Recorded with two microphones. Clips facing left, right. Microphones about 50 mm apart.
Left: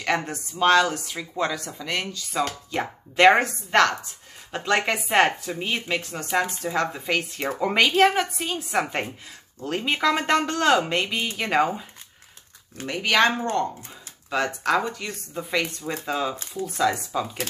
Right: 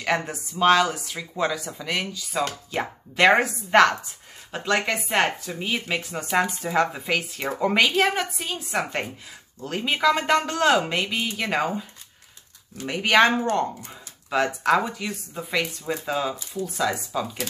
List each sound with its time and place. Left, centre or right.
0.0 s speech: centre
3.7 s speech: centre
4.5 s speech: centre
12.8 s speech: centre